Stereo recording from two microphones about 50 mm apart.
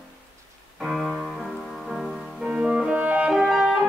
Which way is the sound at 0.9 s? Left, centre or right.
Centre.